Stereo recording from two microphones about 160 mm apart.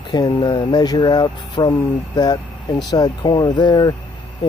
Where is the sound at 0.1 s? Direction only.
30° left (ahead or behind).